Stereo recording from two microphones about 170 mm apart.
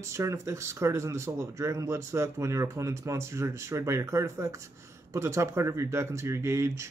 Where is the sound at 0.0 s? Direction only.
20° right (ahead or behind).